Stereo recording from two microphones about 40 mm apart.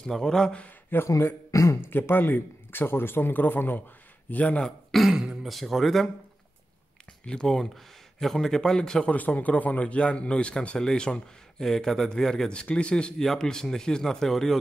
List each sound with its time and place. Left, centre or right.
0.0 s a man's voice: centre
0.7 s a sound: left
1.8 s speech: left
4.3 s a man's voice: left
5.1 s speech: right
5.4 s speech: centre
7.2 s a man's voice: centre
7.7 s a man's voice: centre
9.1 s a man's voice: left
10.0 s speech: left
10.8 s speech: centre
11.6 s a man's voice: centre
12.7 s speech: left
13.2 s a man's voice: centre